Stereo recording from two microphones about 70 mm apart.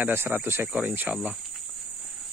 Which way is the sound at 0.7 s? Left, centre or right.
Right.